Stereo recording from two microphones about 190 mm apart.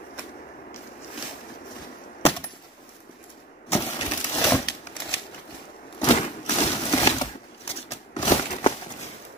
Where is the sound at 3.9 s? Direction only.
20° left (ahead or behind).